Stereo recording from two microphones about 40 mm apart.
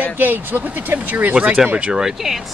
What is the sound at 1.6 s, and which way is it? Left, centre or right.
Speech, right.